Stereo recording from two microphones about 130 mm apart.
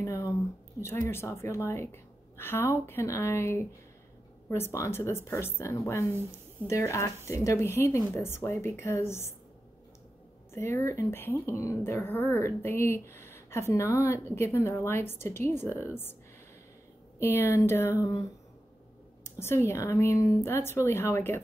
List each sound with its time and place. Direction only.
0.0 s a sound: 25° left (ahead or behind)
0.7 s speech: 20° left (ahead or behind)
10.5 s speech: 20° left (ahead or behind)
17.2 s speech: 20° left (ahead or behind)